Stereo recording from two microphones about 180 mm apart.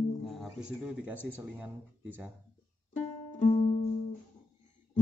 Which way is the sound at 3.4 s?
30° left (ahead or behind).